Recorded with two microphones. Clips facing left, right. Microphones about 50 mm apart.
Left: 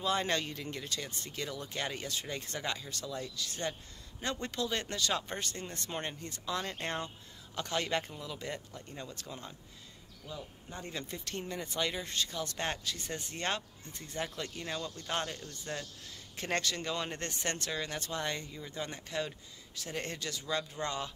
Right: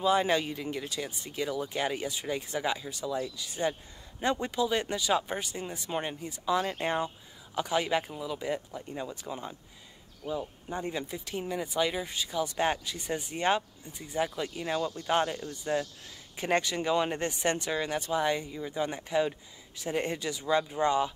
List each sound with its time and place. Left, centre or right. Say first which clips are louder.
0.0 s speech: right 6 dB; centre
10.7 s speech: right 7 dB; centre